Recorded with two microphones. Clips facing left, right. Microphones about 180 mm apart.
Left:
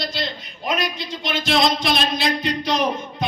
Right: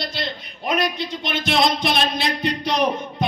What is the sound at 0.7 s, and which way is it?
Speech, 55° right (ahead or behind).